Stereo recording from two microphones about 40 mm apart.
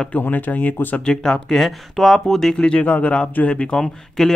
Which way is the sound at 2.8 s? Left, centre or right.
Left.